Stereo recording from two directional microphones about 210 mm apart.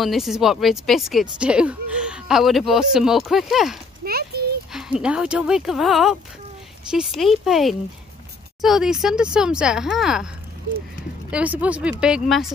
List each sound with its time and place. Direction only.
0.0 s speech: centre (ahead or behind)
4.0 s a sound: 45° right (ahead or behind)
4.7 s speech: 5° right (ahead or behind)
11.2 s speech: 5° right (ahead or behind)